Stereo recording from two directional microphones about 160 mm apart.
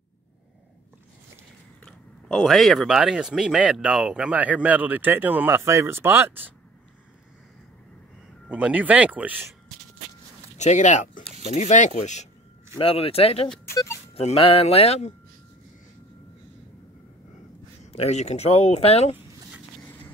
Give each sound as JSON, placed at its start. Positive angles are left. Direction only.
{"t": 1.9, "sound": "speech", "side_deg": 5}
{"t": 8.5, "sound": "speech", "side_deg": -10}
{"t": 10.6, "sound": "speech", "side_deg": 50}
{"t": 13.7, "sound": "music", "side_deg": 15}
{"t": 14.1, "sound": "speech", "side_deg": 40}
{"t": 17.9, "sound": "speech", "side_deg": 40}